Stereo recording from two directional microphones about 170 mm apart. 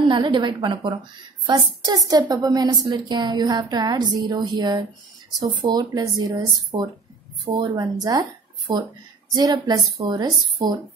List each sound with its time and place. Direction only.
0.0 s a woman's voice: 25° right (ahead or behind)